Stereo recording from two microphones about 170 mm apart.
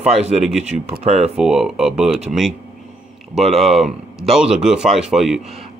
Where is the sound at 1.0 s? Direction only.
40° right (ahead or behind).